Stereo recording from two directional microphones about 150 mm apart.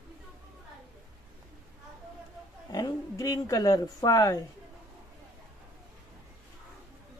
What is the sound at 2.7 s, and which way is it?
Speech, 25° left (ahead or behind).